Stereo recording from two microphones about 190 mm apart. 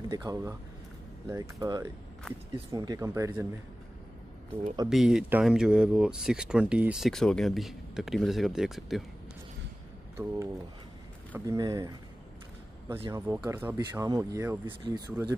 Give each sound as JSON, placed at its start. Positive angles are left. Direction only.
{"t": 0.1, "sound": "speech", "side_deg": -20}
{"t": 2.3, "sound": "speech", "side_deg": 5}
{"t": 2.7, "sound": "speech", "side_deg": -20}
{"t": 4.8, "sound": "speech", "side_deg": -5}
{"t": 10.1, "sound": "speech", "side_deg": -15}
{"t": 13.1, "sound": "speech", "side_deg": -15}